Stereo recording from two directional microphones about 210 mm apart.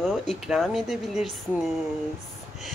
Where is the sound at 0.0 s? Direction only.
Centre (ahead or behind).